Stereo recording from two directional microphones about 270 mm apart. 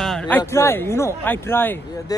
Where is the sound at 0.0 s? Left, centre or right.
Centre.